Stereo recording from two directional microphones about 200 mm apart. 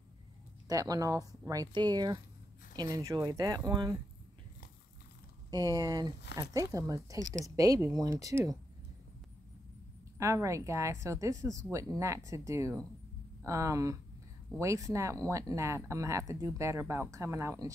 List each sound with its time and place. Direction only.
0.7 s speech: 20° right (ahead or behind)
5.5 s speech: 20° right (ahead or behind)
10.1 s speech: 15° right (ahead or behind)